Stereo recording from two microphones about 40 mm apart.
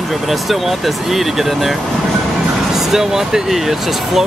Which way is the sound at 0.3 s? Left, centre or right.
Centre.